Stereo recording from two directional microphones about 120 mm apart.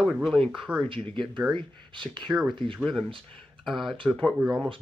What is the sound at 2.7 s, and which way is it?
Speech, centre (ahead or behind).